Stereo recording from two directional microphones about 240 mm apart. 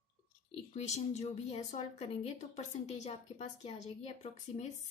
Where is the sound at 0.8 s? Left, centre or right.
Left.